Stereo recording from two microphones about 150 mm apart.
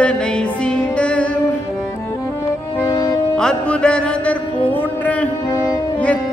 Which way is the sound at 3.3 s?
5° left (ahead or behind).